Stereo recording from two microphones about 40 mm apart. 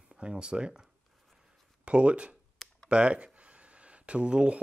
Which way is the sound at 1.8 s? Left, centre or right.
Right.